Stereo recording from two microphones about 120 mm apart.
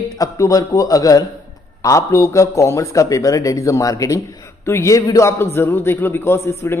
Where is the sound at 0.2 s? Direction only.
25° left (ahead or behind).